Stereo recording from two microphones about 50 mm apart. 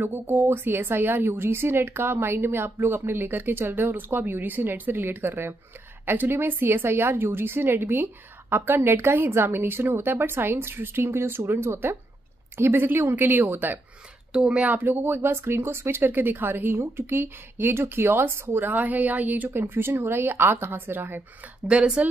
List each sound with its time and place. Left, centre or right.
0.0 s a woman's voice: right
14.3 s speech: centre
14.8 s a woman's voice: right
16.0 s a woman's voice: right
19.5 s a woman's voice: right
21.6 s speech: right